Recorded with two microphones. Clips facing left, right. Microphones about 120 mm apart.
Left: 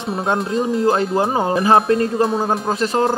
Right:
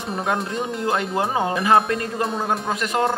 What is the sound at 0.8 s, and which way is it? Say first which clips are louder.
Speech: left 3 dB; 30° left (ahead or behind).